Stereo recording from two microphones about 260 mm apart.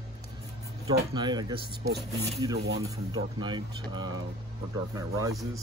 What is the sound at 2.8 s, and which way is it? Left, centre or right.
Speech, centre.